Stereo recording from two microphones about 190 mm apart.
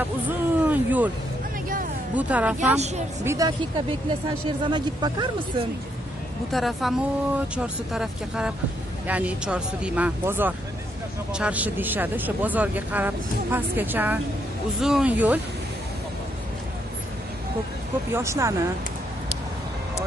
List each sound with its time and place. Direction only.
0.3 s a sound: 10° right (ahead or behind)
2.1 s speech: 5° right (ahead or behind)
3.3 s speech: 20° right (ahead or behind)
6.5 s speech: centre (ahead or behind)
18.1 s speech: 15° right (ahead or behind)